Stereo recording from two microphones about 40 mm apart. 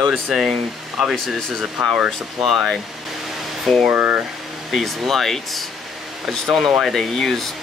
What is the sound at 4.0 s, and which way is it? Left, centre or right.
Speech, right.